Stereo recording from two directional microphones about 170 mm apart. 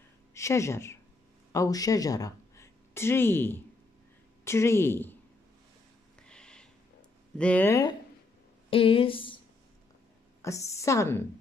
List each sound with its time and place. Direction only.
0.3 s a woman's voice: 15° left (ahead or behind)
6.2 s a sound: 5° left (ahead or behind)
7.3 s a woman's voice: 10° left (ahead or behind)
8.6 s speech: 35° left (ahead or behind)
10.4 s a woman's voice: 15° left (ahead or behind)